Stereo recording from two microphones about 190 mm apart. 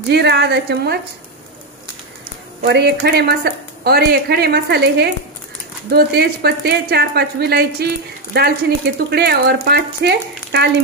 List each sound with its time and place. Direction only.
0.1 s speech: 60° right (ahead or behind)
2.6 s speech: 60° right (ahead or behind)